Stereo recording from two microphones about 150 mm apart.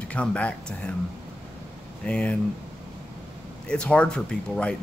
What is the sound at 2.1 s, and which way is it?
Speech, 5° left (ahead or behind).